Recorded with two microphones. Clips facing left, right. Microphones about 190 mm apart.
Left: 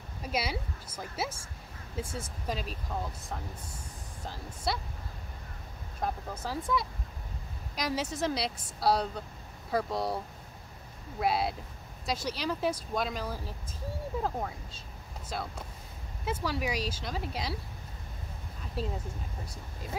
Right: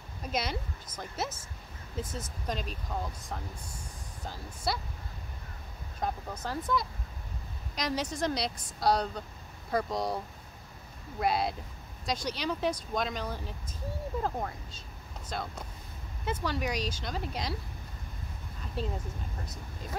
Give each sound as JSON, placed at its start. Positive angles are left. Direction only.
{"t": 0.2, "sound": "a woman's voice", "side_deg": 5}
{"t": 5.9, "sound": "speech", "side_deg": 5}
{"t": 15.2, "sound": "a woman's voice", "side_deg": 5}
{"t": 18.8, "sound": "a woman's voice", "side_deg": 5}